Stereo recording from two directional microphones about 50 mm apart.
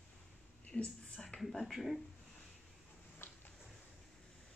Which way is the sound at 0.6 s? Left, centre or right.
Left.